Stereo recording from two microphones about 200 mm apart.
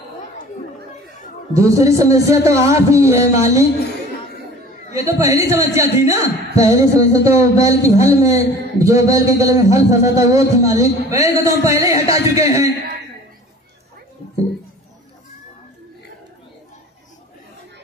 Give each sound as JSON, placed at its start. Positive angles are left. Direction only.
{"t": 1.5, "sound": "a man's voice", "side_deg": -15}
{"t": 4.9, "sound": "a man's voice", "side_deg": -15}